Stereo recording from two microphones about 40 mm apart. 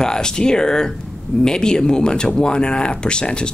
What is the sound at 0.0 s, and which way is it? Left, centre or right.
Speech, centre.